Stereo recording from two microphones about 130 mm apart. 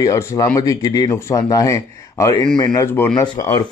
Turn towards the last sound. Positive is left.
turn(degrees=30)  # may be behind; listen again after turning